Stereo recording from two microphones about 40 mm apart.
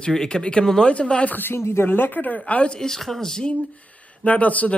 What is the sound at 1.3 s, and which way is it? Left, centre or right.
Speech, left.